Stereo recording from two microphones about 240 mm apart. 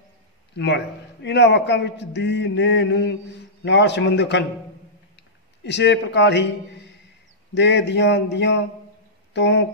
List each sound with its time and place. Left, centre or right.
0.6 s a man's voice: left
5.6 s a man's voice: left
7.5 s a man's voice: left